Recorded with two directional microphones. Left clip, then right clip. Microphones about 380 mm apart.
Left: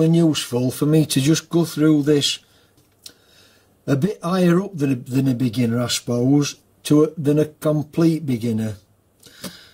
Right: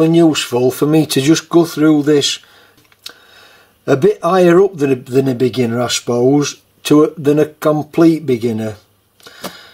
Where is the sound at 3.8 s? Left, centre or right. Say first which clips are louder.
Right 11 dB; centre.